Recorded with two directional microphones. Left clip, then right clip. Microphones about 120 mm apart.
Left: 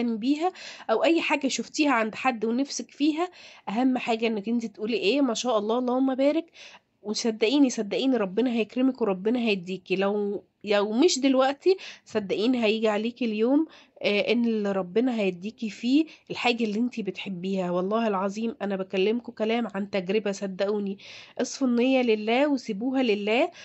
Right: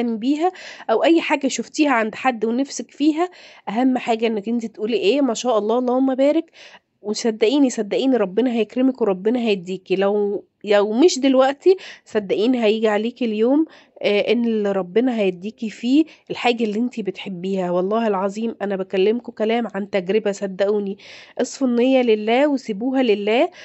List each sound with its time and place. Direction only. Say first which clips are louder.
0.0 s a woman's voice: right 6 dB; 50° right (ahead or behind)